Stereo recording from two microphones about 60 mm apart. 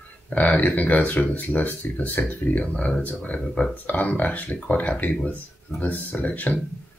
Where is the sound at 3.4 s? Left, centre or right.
Centre.